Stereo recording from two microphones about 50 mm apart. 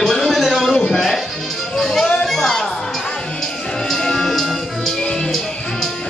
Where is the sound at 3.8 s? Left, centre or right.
Centre.